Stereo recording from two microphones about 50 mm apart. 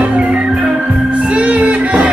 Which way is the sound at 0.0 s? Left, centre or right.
Right.